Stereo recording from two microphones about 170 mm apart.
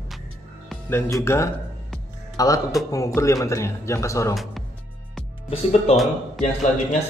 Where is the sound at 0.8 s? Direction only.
15° left (ahead or behind).